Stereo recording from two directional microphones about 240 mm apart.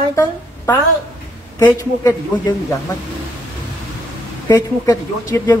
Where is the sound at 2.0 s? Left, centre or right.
Centre.